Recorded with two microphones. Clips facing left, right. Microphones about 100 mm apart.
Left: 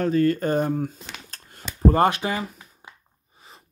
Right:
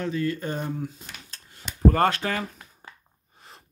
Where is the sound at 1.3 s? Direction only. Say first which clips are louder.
Left 4 dB; 45° left (ahead or behind).